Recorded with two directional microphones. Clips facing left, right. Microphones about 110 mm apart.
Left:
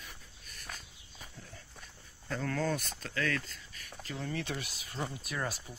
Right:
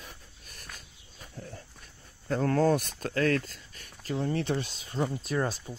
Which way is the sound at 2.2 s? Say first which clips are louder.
Right 9 dB; 40° right (ahead or behind).